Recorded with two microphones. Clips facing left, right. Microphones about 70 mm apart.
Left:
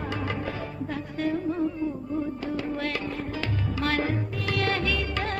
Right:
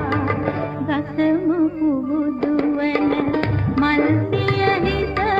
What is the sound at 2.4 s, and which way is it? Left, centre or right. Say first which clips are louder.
Music: right 11 dB; right.